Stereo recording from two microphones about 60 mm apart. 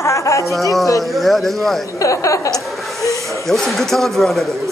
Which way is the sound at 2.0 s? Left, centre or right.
Left.